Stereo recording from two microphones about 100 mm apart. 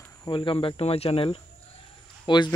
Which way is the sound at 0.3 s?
60° left (ahead or behind).